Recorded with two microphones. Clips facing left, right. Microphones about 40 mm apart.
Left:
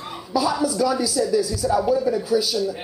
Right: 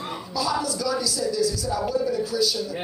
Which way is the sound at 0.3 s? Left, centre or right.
Left.